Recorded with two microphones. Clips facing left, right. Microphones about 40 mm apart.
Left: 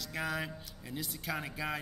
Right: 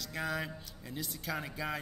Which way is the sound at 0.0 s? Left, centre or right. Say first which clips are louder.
Even; centre.